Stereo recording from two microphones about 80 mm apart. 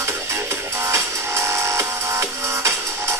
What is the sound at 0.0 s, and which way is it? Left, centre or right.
Music, right.